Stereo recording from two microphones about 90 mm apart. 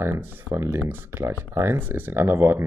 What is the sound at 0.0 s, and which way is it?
Speech, 25° right (ahead or behind).